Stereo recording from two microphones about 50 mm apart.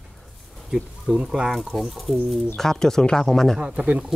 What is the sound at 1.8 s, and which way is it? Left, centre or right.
Speech, centre.